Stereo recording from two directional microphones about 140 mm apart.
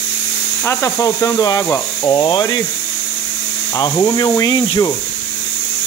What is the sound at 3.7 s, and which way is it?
Speech, 25° left (ahead or behind).